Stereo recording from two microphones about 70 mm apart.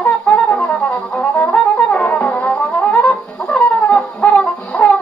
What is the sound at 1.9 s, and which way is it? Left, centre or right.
Music, left.